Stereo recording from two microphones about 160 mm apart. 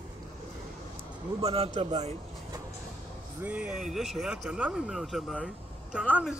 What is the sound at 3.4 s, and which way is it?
Speech, 5° right (ahead or behind).